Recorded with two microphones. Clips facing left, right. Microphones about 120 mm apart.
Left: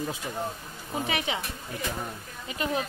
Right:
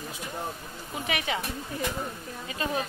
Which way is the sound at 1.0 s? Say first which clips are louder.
Right 1 dB; 25° left (ahead or behind).